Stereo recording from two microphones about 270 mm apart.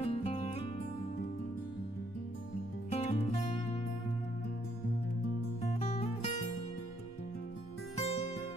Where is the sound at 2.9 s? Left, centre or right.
Left.